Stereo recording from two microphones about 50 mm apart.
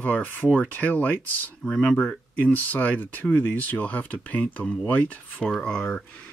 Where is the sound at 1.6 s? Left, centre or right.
Centre.